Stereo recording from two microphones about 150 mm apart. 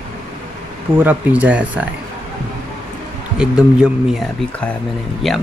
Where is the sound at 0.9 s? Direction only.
10° right (ahead or behind).